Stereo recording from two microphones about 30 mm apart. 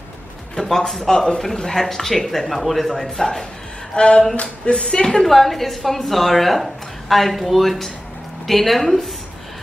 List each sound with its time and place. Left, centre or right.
0.6 s speech: centre
1.0 s speech: left
1.8 s speech: centre
3.9 s speech: left
4.4 s a sound: left
4.8 s speech: left
5.1 s speech: centre